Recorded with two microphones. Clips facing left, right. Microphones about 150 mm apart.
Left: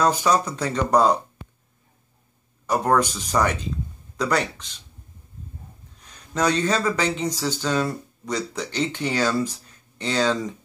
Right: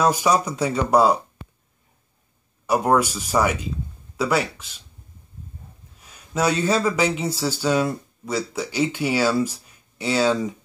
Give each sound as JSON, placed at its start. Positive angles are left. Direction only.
{"t": 0.0, "sound": "speech", "side_deg": -10}
{"t": 2.6, "sound": "speech", "side_deg": -10}
{"t": 5.9, "sound": "speech", "side_deg": -5}